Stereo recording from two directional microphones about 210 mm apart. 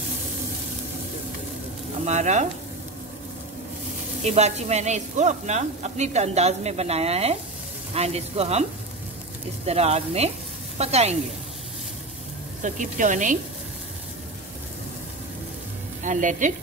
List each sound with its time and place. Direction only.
2.0 s speech: 35° right (ahead or behind)
4.2 s speech: 30° right (ahead or behind)
9.7 s speech: 30° right (ahead or behind)
12.6 s speech: 35° right (ahead or behind)
16.0 s speech: 35° right (ahead or behind)